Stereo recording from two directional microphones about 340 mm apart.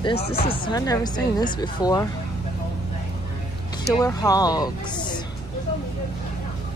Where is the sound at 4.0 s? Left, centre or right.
Centre.